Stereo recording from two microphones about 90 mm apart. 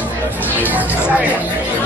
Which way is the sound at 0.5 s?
20° right (ahead or behind).